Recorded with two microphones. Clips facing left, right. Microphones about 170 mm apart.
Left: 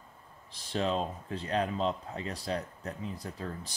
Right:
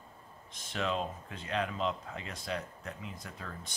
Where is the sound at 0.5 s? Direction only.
35° left (ahead or behind).